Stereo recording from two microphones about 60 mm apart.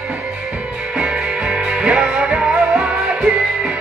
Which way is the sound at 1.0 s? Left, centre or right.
Centre.